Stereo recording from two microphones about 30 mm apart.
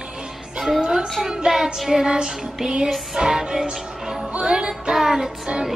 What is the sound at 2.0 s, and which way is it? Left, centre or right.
Music, right.